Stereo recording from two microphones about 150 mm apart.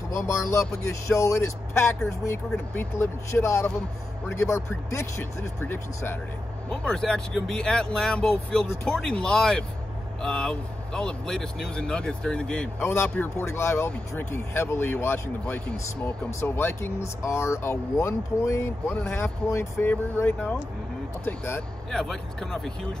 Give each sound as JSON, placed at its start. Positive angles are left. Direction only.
{"t": 0.1, "sound": "speech", "side_deg": 20}
{"t": 6.7, "sound": "speech", "side_deg": 5}
{"t": 21.9, "sound": "speech", "side_deg": 5}